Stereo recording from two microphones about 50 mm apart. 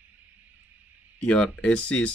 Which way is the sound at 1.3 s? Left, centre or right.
Left.